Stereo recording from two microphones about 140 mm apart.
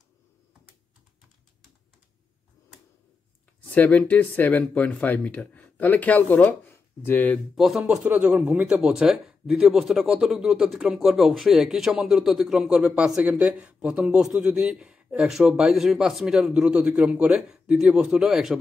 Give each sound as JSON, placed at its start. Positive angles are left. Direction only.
{"t": 3.7, "sound": "speech", "side_deg": 10}
{"t": 7.5, "sound": "speech", "side_deg": 0}